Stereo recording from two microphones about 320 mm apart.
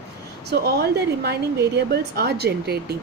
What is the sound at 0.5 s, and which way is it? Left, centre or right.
A woman's voice, right.